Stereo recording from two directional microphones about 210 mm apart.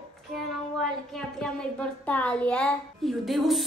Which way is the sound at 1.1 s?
5° left (ahead or behind).